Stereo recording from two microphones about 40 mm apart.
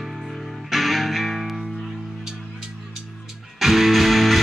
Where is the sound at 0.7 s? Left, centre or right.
Centre.